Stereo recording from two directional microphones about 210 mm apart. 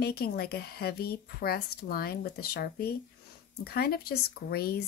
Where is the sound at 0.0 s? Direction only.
50° left (ahead or behind).